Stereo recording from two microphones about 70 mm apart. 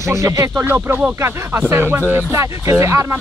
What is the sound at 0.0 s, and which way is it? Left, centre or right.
Speech, right.